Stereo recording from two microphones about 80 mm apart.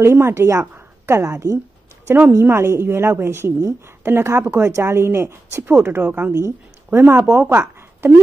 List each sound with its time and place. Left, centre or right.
0.0 s a woman's voice: right
2.0 s a woman's voice: right